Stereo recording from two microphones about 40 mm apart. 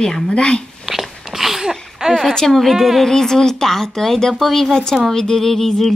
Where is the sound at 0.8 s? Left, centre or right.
Centre.